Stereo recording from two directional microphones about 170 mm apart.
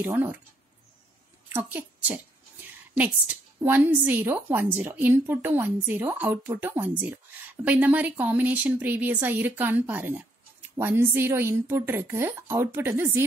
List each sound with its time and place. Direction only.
0.0 s speech: 10° right (ahead or behind)
1.5 s speech: 10° right (ahead or behind)